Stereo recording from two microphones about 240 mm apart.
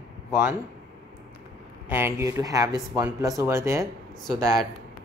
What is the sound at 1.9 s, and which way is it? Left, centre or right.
Speech, centre.